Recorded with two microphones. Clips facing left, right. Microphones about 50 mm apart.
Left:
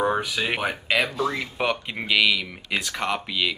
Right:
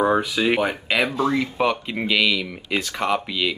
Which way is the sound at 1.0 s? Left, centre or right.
Right.